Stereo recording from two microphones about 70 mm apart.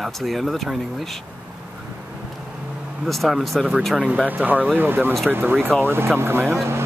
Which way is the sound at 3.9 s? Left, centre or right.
Centre.